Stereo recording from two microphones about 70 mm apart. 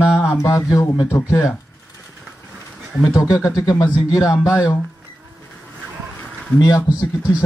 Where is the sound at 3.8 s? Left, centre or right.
Left.